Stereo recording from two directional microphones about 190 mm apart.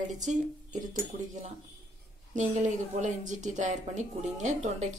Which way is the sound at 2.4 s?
40° right (ahead or behind).